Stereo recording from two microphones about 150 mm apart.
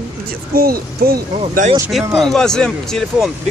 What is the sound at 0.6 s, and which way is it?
Speech, 90° right.